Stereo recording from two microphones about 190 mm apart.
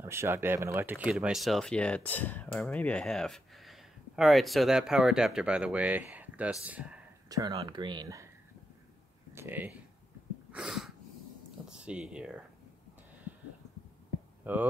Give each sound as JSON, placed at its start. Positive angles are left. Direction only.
{"t": 0.0, "sound": "speech", "side_deg": -15}
{"t": 7.2, "sound": "speech", "side_deg": -20}
{"t": 9.3, "sound": "speech", "side_deg": -10}
{"t": 10.5, "sound": "a sound", "side_deg": -5}
{"t": 11.7, "sound": "speech", "side_deg": -5}
{"t": 14.4, "sound": "speech", "side_deg": -10}